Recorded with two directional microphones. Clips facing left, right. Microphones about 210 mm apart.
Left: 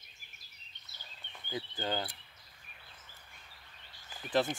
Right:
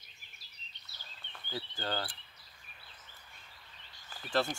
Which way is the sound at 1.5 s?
15° left (ahead or behind).